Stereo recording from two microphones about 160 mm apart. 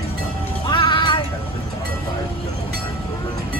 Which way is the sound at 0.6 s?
30° left (ahead or behind).